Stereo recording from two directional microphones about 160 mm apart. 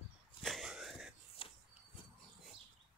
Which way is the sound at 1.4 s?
35° left (ahead or behind).